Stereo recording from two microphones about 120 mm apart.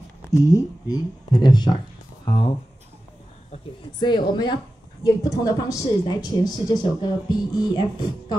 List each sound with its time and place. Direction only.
0.3 s a woman's voice: 25° left (ahead or behind); by 2.5 s 40° left (ahead or behind)
4.0 s a woman's voice: 40° left (ahead or behind)